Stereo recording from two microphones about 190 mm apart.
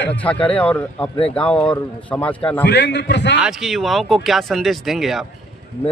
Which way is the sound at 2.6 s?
65° left (ahead or behind).